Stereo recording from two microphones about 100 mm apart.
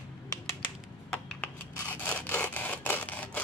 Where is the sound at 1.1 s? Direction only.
10° left (ahead or behind).